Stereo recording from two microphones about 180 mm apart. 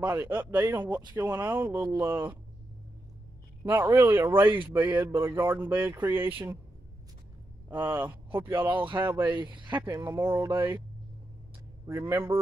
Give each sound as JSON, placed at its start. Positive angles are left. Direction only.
{"t": 0.0, "sound": "speech", "side_deg": -10}
{"t": 0.6, "sound": "speech", "side_deg": -20}
{"t": 0.8, "sound": "speech", "side_deg": -5}
{"t": 3.6, "sound": "speech", "side_deg": -10}
{"t": 7.7, "sound": "speech", "side_deg": -10}
{"t": 9.4, "sound": "speech", "side_deg": -25}
{"t": 9.7, "sound": "speech", "side_deg": -15}
{"t": 11.8, "sound": "speech", "side_deg": -15}